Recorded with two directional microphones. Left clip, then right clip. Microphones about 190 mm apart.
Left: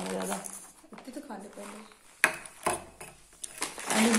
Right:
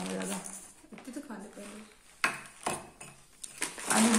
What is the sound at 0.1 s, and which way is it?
Bird, 10° left (ahead or behind).